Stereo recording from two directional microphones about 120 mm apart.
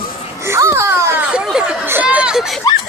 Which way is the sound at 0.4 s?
20° right (ahead or behind).